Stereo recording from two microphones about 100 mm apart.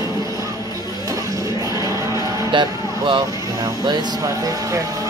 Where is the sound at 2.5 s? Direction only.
55° right (ahead or behind).